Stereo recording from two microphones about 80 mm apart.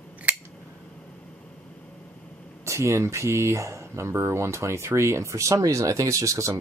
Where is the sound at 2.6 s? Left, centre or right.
Right.